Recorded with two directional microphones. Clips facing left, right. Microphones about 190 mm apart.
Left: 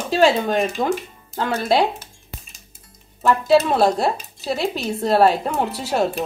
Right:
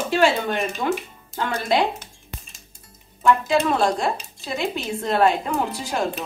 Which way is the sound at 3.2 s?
35° left (ahead or behind).